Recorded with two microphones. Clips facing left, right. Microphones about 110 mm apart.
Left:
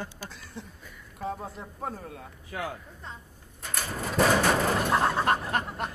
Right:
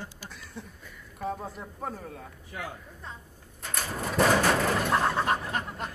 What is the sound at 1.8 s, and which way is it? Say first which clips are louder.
Speech: left 1 dB; 10° left (ahead or behind).